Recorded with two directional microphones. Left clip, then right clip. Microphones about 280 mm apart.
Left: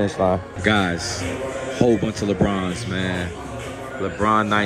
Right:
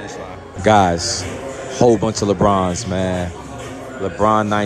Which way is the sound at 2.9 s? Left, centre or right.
Centre.